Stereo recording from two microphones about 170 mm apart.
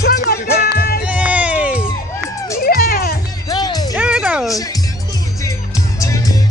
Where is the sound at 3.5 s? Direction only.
25° left (ahead or behind).